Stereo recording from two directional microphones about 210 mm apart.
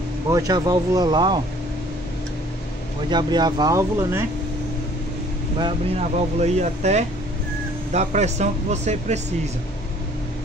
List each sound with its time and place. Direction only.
0.3 s speech: 15° right (ahead or behind)
3.1 s speech: 20° right (ahead or behind)
6.4 s speech: 35° right (ahead or behind)